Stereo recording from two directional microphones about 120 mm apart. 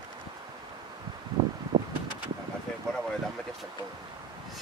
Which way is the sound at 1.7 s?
40° right (ahead or behind).